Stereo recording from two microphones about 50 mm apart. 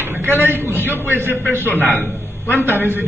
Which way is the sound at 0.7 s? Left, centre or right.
Left.